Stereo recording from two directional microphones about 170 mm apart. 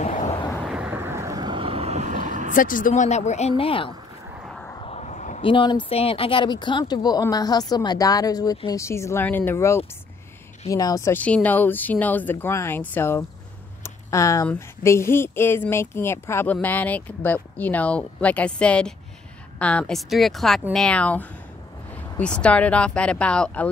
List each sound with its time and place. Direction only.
0.0 s a sound: 40° left (ahead or behind)
0.7 s vehicle: 5° right (ahead or behind); by 2.5 s 45° right (ahead or behind)
2.5 s speech: 55° left (ahead or behind); by 3.9 s 30° left (ahead or behind)
4.7 s vehicle: 35° left (ahead or behind)
5.4 s speech: 30° left (ahead or behind); by 13.2 s 10° left (ahead or behind)
13.8 s a sound: 20° left (ahead or behind)
14.5 s a woman's voice: 15° left (ahead or behind)